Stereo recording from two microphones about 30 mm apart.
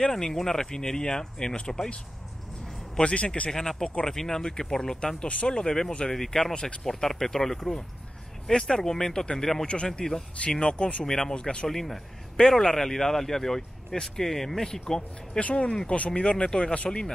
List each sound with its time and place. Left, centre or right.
0.1 s speech: centre
3.0 s a man's voice: left
3.5 s speech: centre
6.5 s speech: left
6.9 s speech: centre
8.5 s speech: left
10.5 s a man's voice: left
11.1 s speech: centre
11.3 s a man's voice: left
11.6 s speech: centre
14.7 s speech: left
15.3 s a man's voice: left
16.7 s a man's voice: left